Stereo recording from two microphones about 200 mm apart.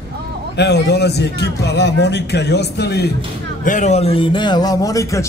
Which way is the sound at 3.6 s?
35° left (ahead or behind).